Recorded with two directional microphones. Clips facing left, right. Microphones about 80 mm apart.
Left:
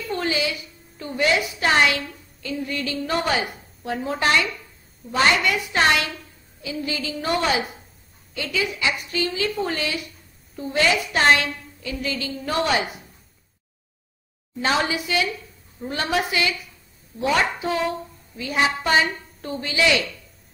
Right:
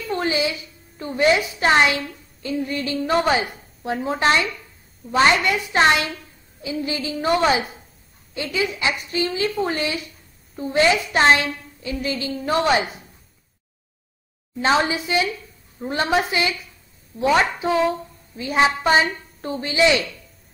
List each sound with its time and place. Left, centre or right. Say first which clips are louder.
0.1 s a woman's voice: right 2 dB; right
14.6 s a woman's voice: right 3 dB; right